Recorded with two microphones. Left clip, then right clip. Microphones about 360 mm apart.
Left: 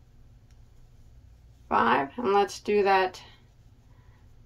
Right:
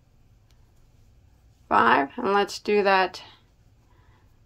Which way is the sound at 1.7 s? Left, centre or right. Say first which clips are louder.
Right 4 dB; centre.